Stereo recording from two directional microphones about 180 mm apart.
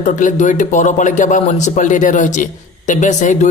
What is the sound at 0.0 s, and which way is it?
A man's voice, 45° left (ahead or behind).